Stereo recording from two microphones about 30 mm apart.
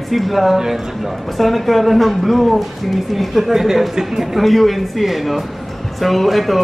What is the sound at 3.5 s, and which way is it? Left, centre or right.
Speech, centre.